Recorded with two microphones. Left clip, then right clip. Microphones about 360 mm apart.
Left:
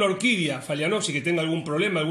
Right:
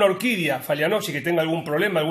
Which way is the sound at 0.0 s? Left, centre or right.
Right.